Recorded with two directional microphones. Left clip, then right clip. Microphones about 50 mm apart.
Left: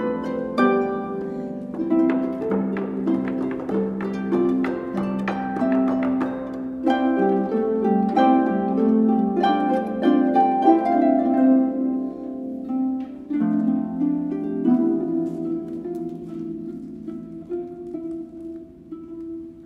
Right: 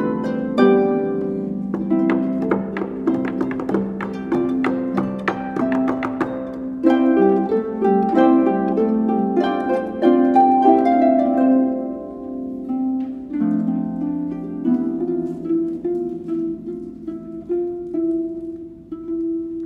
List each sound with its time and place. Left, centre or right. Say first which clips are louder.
0.0 s harp: right 2 dB; right
1.9 s music: right 1 dB; right
6.9 s harp: right 5 dB; right
13.3 s harp: even; right